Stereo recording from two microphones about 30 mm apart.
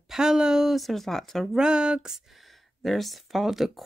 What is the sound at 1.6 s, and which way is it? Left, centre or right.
Speech, right.